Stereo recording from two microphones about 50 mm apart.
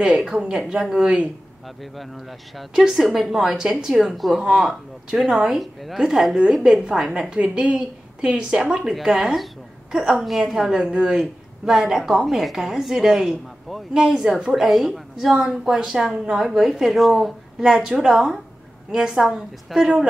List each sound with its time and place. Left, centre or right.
0.0 s a woman's voice: centre
1.8 s a woman's voice: centre
5.9 s a woman's voice: centre
14.4 s a woman's voice: centre